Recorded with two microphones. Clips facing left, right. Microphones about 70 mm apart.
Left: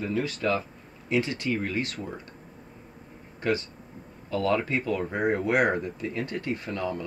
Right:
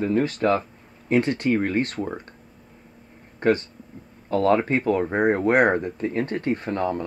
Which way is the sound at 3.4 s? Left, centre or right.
Right.